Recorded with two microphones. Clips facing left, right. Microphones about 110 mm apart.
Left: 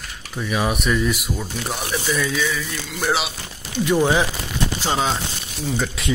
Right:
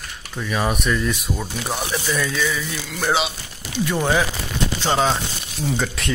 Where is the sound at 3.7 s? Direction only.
15° left (ahead or behind).